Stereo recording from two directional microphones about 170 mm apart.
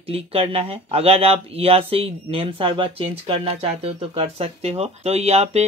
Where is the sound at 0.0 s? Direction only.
35° right (ahead or behind).